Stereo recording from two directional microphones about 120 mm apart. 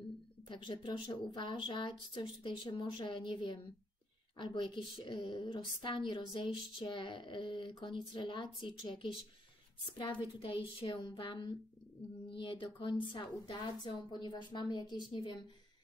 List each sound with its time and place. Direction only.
0.5 s a woman's voice: 40° left (ahead or behind)
10.4 s a woman's voice: 45° left (ahead or behind)